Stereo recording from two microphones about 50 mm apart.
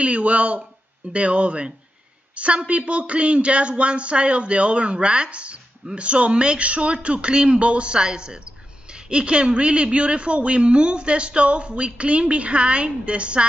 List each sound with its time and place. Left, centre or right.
0.0 s a woman's voice: right